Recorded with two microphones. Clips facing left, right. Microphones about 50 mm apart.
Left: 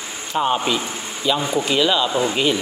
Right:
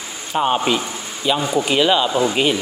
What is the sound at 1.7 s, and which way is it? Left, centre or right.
Speech, centre.